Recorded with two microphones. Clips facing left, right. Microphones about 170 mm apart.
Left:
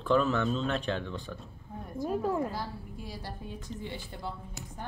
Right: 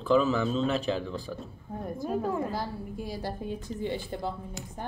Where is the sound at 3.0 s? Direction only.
45° right (ahead or behind).